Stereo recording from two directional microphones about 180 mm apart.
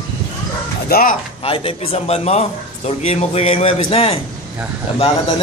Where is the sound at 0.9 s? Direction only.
50° left (ahead or behind).